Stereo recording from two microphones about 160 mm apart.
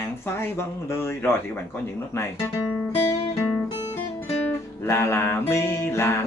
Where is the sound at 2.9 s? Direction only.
20° left (ahead or behind).